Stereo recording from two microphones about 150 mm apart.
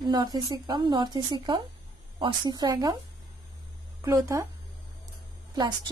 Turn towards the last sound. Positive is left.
turn(degrees=-30)  # may be behind; listen again after turning